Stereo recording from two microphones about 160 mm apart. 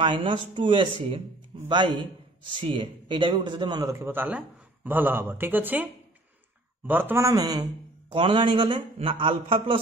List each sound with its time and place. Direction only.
0.0 s a man's voice: 30° right (ahead or behind)
1.5 s music: 30° right (ahead or behind)
2.4 s a man's voice: 30° right (ahead or behind); by 5.9 s 10° right (ahead or behind)
6.9 s a man's voice: 10° right (ahead or behind); by 9.8 s 35° right (ahead or behind)